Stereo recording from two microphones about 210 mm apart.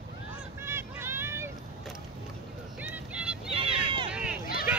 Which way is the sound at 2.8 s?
5° right (ahead or behind).